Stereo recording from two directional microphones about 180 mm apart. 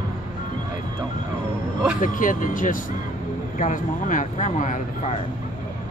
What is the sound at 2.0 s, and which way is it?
Speech, 45° left (ahead or behind).